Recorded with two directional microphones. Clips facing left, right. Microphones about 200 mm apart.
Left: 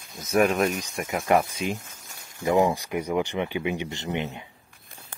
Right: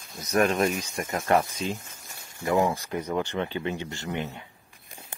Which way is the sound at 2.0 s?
Centre (ahead or behind).